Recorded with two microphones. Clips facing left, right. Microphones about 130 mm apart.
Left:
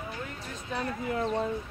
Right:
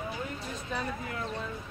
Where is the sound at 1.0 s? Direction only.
30° left (ahead or behind).